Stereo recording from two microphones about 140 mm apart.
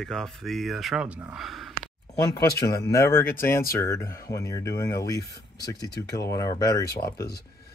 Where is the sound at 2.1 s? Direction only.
30° left (ahead or behind).